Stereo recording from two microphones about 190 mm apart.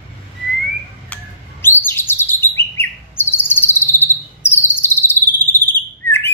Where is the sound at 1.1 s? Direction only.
10° left (ahead or behind).